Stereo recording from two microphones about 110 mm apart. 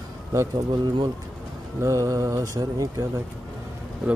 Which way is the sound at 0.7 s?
40° right (ahead or behind).